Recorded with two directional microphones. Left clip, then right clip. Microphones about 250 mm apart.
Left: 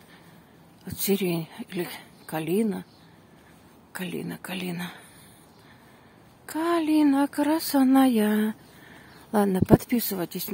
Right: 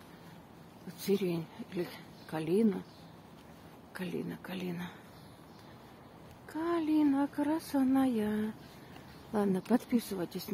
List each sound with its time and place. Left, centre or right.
0.9 s speech: left
3.9 s speech: left
6.4 s speech: left